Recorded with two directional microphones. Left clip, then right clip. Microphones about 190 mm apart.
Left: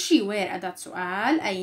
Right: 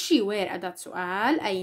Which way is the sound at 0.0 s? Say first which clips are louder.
Left 1 dB; 40° right (ahead or behind).